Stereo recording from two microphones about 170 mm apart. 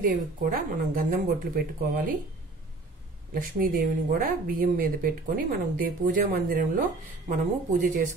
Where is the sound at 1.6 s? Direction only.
55° right (ahead or behind).